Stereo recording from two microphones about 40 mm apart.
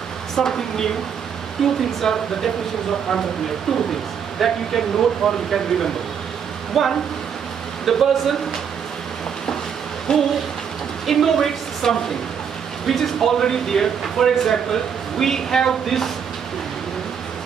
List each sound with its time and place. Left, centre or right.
0.4 s speech: centre
4.4 s speech: centre
10.1 s hoot: left
11.1 s speech: centre